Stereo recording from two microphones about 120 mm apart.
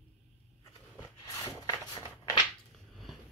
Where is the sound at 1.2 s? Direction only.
35° left (ahead or behind).